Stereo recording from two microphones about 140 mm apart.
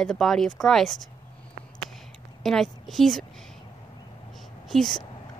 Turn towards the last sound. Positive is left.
turn(degrees=0)  # may be behind; listen again after turning